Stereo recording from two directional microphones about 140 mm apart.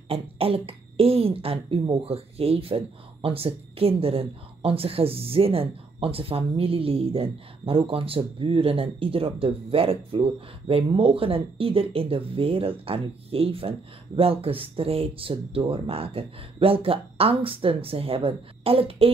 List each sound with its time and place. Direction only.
0.1 s speech: 45° right (ahead or behind)